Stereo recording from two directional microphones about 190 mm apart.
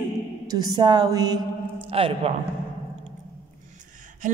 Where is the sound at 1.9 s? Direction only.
30° right (ahead or behind).